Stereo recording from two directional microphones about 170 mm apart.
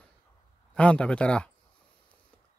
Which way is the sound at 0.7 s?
5° left (ahead or behind).